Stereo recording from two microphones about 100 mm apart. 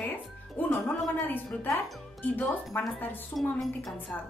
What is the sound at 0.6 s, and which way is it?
A woman's voice, 20° left (ahead or behind).